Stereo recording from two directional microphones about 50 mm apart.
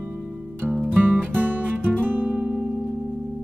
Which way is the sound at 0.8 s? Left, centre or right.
Right.